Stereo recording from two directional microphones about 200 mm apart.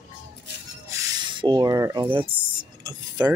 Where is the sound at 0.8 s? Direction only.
20° right (ahead or behind).